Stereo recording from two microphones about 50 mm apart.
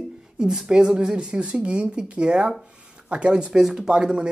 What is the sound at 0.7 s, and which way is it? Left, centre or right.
Speech, centre.